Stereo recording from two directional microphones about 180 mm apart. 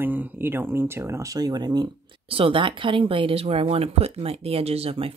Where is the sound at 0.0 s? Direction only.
10° right (ahead or behind).